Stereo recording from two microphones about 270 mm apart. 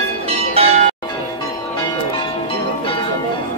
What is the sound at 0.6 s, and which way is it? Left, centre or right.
Change ringing, right.